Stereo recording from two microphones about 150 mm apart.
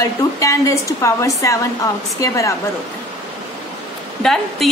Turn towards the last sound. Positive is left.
turn(degrees=5)  # may be behind; listen again after turning